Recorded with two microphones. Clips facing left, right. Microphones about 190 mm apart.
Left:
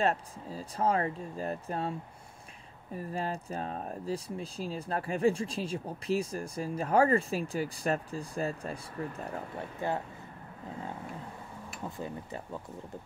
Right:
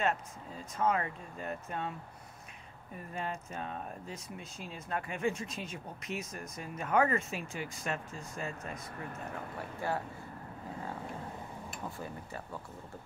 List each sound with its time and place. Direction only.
0.0 s speech: 35° left (ahead or behind)
9.6 s speech: 20° left (ahead or behind)